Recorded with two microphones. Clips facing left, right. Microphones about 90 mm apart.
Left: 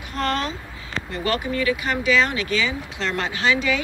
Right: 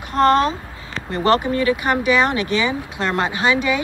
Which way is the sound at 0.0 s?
40° right (ahead or behind).